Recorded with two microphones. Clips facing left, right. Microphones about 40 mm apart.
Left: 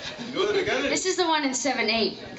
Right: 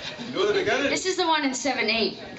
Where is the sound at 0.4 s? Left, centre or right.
Centre.